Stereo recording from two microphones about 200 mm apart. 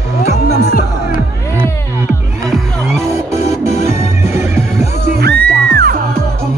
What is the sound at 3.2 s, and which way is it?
Music, 15° right (ahead or behind).